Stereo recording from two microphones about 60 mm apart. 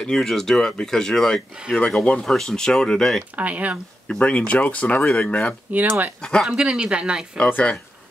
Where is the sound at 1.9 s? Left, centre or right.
Centre.